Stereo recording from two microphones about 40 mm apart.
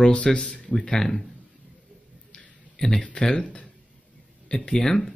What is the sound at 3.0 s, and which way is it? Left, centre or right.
Speech, left.